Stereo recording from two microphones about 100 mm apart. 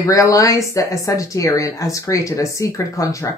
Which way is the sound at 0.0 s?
35° left (ahead or behind).